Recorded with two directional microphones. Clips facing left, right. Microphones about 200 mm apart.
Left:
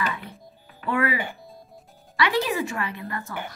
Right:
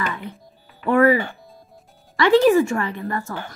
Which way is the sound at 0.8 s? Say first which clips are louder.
Right 9 dB; 45° right (ahead or behind).